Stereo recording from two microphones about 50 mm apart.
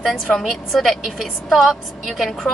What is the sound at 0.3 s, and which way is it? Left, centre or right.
A woman's voice, centre.